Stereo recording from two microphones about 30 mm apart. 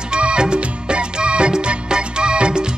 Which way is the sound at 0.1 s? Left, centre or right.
Right.